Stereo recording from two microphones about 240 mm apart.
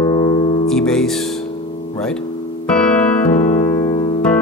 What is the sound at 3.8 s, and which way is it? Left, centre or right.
Electric piano, left.